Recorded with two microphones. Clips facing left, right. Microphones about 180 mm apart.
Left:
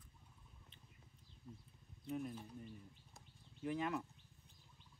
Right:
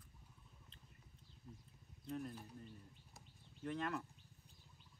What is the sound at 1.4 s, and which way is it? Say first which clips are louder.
Speech: left 2 dB; centre (ahead or behind).